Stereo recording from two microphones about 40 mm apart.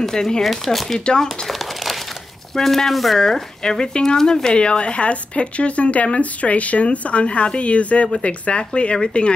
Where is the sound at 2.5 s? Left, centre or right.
Centre.